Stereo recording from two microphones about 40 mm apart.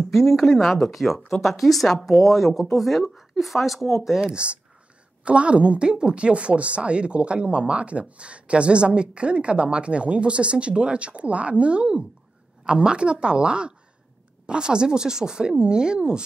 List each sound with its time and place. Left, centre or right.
0.1 s speech: centre
4.2 s speech: right